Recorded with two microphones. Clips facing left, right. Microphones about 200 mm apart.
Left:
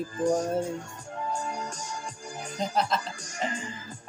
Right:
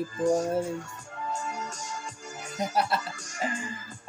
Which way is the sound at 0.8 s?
30° left (ahead or behind).